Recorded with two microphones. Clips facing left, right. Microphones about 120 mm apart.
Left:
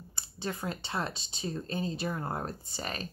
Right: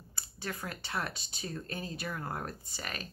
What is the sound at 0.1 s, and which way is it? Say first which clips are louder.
Speech: left 4 dB; 25° left (ahead or behind).